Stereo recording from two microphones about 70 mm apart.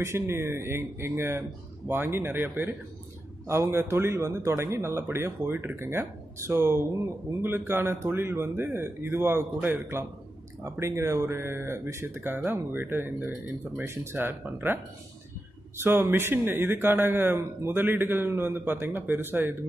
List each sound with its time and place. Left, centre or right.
0.0 s a man's voice: right
3.4 s a man's voice: right
10.6 s a man's voice: right
15.8 s a man's voice: right